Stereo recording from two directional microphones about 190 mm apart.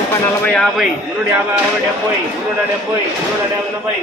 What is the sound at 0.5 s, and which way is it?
Speech, 5° left (ahead or behind).